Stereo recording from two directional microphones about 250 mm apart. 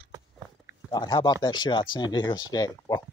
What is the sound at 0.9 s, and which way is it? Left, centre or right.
Speech, centre.